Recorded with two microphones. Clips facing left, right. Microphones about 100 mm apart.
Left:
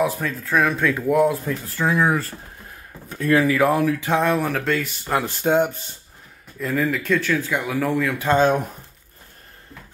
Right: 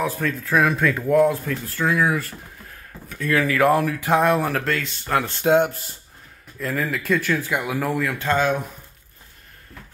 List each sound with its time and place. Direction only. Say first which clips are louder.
0.0 s speech: left 2 dB; 5° left (ahead or behind)
1.5 s speech: left 1 dB; 20° left (ahead or behind)
3.5 s speech: even; 5° left (ahead or behind)
5.4 s speech: right 2 dB; centre (ahead or behind)
8.4 s speech: left 5 dB; 40° left (ahead or behind)